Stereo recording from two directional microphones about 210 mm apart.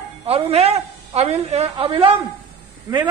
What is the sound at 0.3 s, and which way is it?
A woman's voice, 30° right (ahead or behind).